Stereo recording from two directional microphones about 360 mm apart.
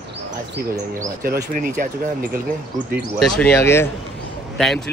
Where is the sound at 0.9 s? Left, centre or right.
Right.